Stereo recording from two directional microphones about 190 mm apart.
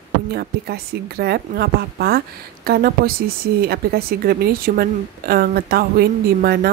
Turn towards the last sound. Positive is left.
turn(degrees=-55)  # may be behind; listen again after turning